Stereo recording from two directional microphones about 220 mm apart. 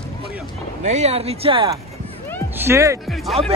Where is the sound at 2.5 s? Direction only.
10° right (ahead or behind).